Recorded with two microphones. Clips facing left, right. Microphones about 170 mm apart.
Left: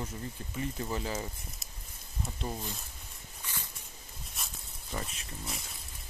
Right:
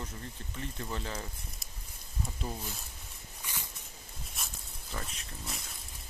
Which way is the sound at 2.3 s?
5° left (ahead or behind).